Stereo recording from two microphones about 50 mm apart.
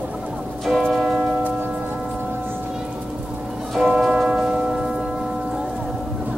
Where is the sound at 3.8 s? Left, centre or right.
Centre.